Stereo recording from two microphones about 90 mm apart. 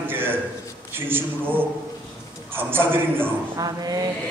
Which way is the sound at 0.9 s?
25° right (ahead or behind).